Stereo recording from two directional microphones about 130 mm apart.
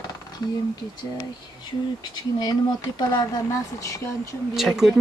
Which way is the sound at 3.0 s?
30° left (ahead or behind).